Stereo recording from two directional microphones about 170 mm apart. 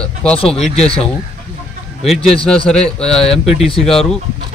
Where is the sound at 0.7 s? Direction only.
35° left (ahead or behind).